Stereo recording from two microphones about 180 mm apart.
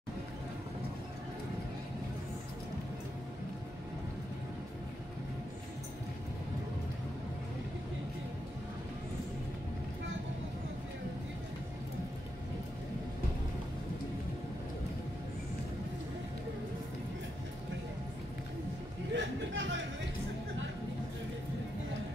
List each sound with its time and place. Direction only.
19.1 s music: 90° right